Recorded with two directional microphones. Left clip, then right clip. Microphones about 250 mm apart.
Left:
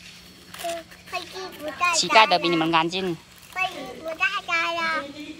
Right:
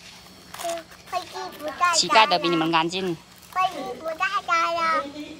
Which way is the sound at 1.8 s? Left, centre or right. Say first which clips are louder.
Even; centre.